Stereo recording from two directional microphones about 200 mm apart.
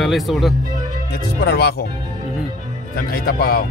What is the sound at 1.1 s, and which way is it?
Speech, 55° left (ahead or behind).